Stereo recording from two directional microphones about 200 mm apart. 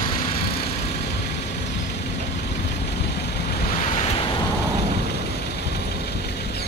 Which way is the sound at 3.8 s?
30° left (ahead or behind).